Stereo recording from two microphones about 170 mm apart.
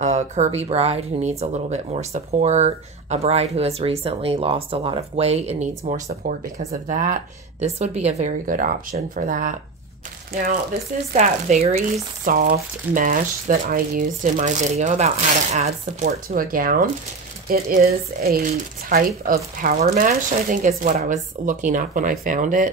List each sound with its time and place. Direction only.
0.0 s speech: 40° right (ahead or behind)
11.1 s speech: 40° right (ahead or behind)
12.3 s speech: 60° right (ahead or behind); by 16.1 s 40° right (ahead or behind)
16.3 s speech: 55° right (ahead or behind)